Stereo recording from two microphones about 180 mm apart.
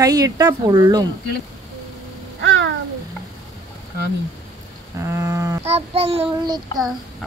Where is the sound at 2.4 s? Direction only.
90° right.